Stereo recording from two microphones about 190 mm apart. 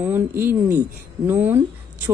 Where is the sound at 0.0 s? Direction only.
10° right (ahead or behind).